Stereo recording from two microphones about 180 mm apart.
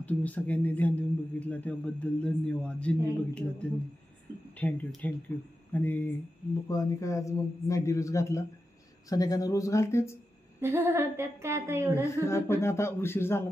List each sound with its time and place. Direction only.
0.0 s speech: 10° left (ahead or behind)
4.6 s speech: 10° left (ahead or behind)
10.6 s a woman's voice: 10° right (ahead or behind)
11.9 s speech: 15° left (ahead or behind)